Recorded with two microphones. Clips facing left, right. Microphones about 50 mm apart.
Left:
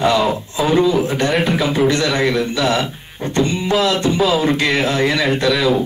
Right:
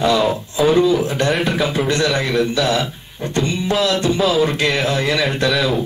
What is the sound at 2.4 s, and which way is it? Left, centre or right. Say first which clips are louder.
Beatboxing: even; left.